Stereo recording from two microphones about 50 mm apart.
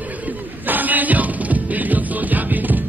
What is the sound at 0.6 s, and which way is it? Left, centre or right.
Music, right.